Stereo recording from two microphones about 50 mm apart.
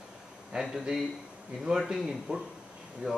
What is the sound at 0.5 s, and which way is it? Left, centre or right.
A man's voice, centre.